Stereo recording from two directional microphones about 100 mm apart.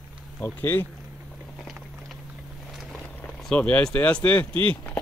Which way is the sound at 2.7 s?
Centre (ahead or behind).